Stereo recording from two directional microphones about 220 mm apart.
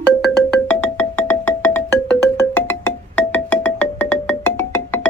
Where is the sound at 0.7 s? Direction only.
10° left (ahead or behind).